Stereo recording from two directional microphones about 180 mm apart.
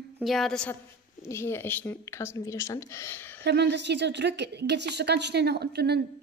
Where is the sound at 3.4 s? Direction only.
70° right (ahead or behind).